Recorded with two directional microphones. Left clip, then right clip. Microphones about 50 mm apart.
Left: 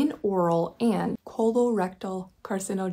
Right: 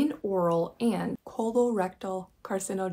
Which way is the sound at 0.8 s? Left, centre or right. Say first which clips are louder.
Left 3 dB; left.